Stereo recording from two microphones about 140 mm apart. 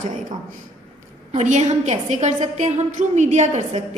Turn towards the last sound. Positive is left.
turn(degrees=-50)  # may be behind; listen again after turning